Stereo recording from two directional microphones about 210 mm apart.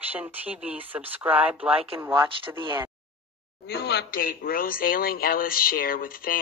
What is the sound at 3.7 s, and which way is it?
Speech, 50° left (ahead or behind).